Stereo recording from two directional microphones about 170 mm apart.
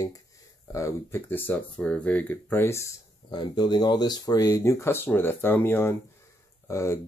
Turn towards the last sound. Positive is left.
turn(degrees=15)  # may be behind; listen again after turning